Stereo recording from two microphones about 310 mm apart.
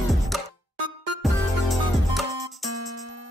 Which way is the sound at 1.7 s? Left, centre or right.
Centre.